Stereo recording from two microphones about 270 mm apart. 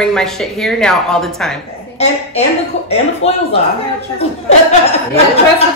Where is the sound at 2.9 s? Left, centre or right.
Left.